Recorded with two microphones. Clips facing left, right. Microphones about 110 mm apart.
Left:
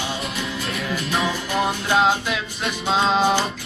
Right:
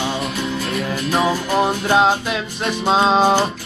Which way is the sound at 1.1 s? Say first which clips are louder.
Right 7 dB; 35° right (ahead or behind).